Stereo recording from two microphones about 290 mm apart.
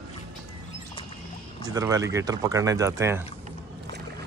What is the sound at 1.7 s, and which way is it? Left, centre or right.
Speech, centre.